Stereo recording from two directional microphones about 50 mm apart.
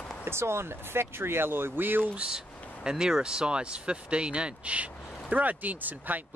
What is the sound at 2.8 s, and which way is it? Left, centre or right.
Speech, centre.